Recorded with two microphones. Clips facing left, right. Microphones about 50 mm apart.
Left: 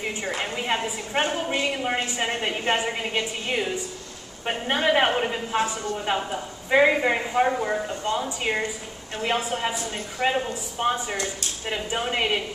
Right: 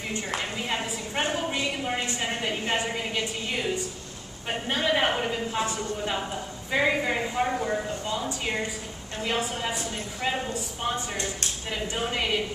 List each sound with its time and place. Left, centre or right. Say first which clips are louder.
0.0 s a woman's voice: left 2 dB; centre